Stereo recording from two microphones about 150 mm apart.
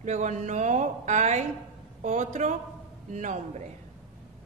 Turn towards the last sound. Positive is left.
turn(degrees=-55)  # may be behind; listen again after turning